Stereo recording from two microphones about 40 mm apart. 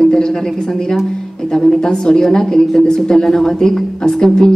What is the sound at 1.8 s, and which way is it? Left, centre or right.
A woman's voice, centre.